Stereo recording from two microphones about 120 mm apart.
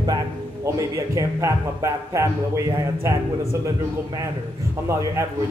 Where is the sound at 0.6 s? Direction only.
25° right (ahead or behind).